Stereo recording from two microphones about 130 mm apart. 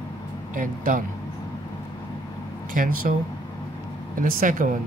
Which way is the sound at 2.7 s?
90° right.